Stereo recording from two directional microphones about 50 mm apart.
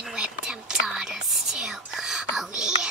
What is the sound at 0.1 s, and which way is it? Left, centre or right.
Whispering, centre.